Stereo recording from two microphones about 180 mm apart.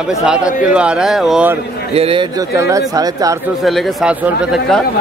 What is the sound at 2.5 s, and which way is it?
Speech, 15° right (ahead or behind).